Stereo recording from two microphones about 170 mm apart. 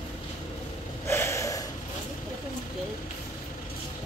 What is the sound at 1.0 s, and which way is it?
Snort, 15° left (ahead or behind).